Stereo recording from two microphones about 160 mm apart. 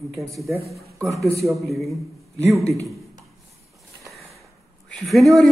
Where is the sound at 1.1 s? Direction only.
20° right (ahead or behind).